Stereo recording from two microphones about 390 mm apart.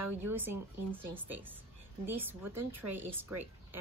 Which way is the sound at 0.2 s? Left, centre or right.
Centre.